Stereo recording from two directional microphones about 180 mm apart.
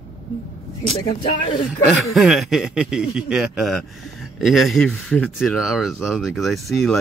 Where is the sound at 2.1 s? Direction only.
Centre (ahead or behind).